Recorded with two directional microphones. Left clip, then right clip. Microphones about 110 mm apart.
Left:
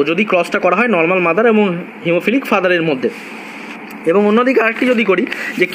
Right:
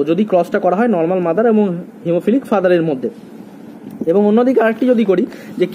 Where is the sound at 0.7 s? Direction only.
10° right (ahead or behind).